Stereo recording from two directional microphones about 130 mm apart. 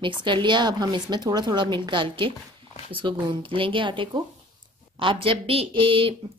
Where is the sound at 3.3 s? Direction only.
40° right (ahead or behind).